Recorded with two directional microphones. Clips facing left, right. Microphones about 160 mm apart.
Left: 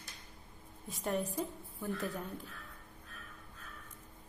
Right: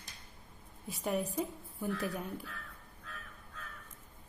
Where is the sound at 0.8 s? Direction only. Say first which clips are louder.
Right 1 dB; 10° right (ahead or behind).